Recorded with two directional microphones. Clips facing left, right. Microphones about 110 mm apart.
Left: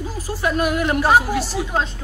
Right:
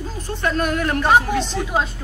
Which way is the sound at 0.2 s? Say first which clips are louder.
Left 1 dB; 5° left (ahead or behind).